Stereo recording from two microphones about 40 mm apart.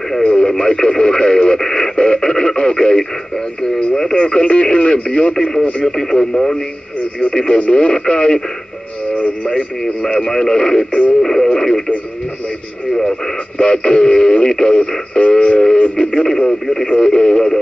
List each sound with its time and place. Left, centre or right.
0.2 s radio: left
5.9 s radio: centre
9.1 s radio: left
9.5 s radio: left
10.9 s music: left
11.4 s radio: centre
13.6 s radio: left
15.1 s a sound: left
15.7 s radio: left
16.3 s radio: centre